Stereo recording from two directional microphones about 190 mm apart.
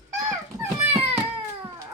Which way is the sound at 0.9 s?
30° right (ahead or behind).